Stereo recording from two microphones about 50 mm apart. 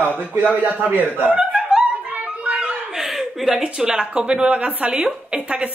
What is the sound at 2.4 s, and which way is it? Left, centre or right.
Chuckle, right.